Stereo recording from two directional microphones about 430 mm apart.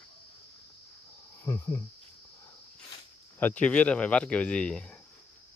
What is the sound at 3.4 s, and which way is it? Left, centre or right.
Speech, centre.